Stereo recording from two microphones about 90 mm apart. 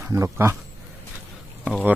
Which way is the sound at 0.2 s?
30° right (ahead or behind).